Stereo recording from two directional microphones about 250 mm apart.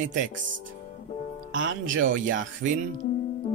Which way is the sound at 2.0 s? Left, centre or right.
Right.